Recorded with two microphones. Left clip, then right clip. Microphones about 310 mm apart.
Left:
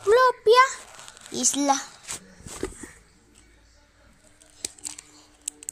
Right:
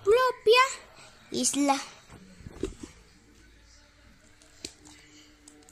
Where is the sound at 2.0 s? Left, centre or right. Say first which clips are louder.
Left 12 dB; left.